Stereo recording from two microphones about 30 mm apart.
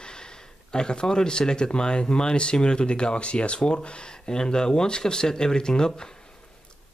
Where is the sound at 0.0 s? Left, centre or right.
Left.